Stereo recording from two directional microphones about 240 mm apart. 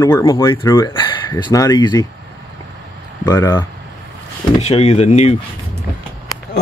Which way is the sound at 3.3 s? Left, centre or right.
Centre.